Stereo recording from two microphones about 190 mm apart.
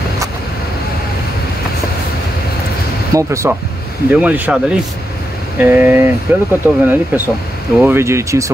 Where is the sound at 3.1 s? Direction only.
15° right (ahead or behind).